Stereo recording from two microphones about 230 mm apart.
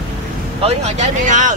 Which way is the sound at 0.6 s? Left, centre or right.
Right.